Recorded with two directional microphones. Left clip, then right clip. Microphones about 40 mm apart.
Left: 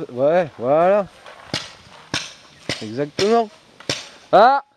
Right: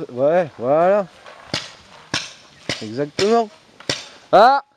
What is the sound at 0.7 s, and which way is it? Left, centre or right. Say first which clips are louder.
Speech: even; right.